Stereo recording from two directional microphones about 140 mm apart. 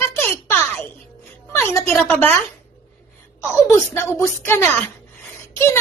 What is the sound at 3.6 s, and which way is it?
Speech, 20° left (ahead or behind).